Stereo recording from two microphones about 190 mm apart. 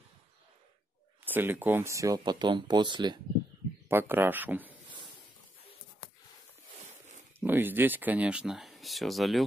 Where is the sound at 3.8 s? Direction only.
10° right (ahead or behind).